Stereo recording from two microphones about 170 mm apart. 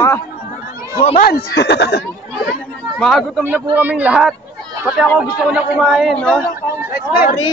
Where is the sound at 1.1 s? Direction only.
65° left (ahead or behind); by 2.0 s 85° left.